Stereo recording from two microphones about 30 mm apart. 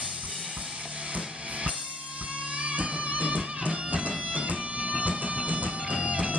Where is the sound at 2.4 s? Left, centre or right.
Right.